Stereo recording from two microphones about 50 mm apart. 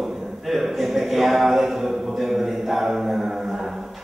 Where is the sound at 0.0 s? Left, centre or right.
Centre.